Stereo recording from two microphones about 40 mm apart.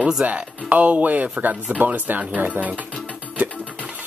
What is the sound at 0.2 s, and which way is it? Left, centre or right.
Speech, right.